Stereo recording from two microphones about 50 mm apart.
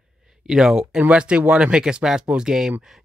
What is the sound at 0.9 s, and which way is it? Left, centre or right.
Speech, right.